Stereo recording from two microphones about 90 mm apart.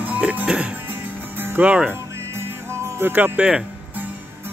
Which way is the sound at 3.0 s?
20° right (ahead or behind).